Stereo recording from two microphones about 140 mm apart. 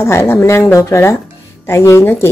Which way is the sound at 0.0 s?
20° left (ahead or behind).